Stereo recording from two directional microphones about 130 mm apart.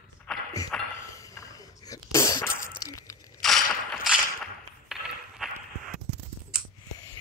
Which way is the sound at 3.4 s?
Centre (ahead or behind).